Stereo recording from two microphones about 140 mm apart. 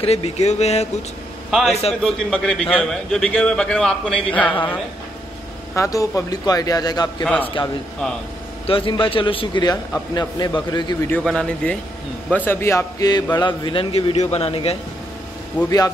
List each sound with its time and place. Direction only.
0.0 s speech: 50° left (ahead or behind)
2.0 s a man's voice: 5° left (ahead or behind)
5.8 s a man's voice: 25° left (ahead or behind)
7.2 s speech: 10° left (ahead or behind)
8.6 s a man's voice: 40° left (ahead or behind)
11.2 s a man's voice: 5° left (ahead or behind); by 14.1 s 40° left (ahead or behind)
14.1 s speech: 50° left (ahead or behind)
15.6 s speech: 10° left (ahead or behind)